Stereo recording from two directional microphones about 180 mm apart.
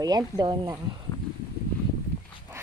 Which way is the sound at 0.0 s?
25° right (ahead or behind).